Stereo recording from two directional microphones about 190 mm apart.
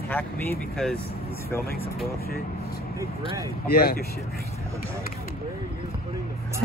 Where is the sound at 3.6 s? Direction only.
55° left (ahead or behind).